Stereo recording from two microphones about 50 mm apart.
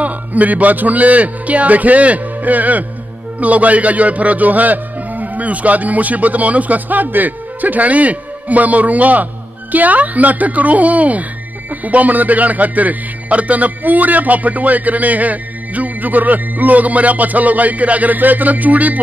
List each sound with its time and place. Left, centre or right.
0.0 s a man's voice: right